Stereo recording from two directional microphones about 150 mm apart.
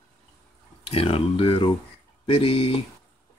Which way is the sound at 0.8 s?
40° left (ahead or behind).